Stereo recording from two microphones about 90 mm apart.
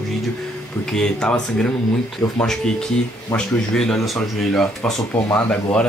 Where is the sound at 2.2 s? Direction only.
35° left (ahead or behind).